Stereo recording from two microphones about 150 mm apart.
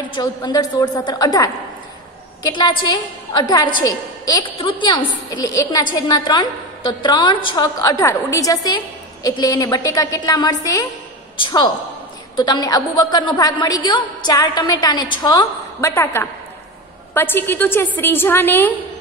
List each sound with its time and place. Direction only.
0.1 s a woman's voice: 25° left (ahead or behind)
15.9 s a woman's voice: 15° left (ahead or behind)